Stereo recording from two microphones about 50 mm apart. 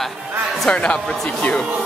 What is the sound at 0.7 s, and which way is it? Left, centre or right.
Speech, left.